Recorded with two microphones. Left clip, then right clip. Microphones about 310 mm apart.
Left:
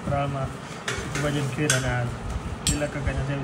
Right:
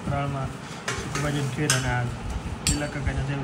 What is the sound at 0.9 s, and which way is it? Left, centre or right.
Stir, centre.